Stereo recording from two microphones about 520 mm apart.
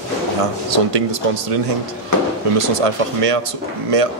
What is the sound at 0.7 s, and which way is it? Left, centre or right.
Speech, right.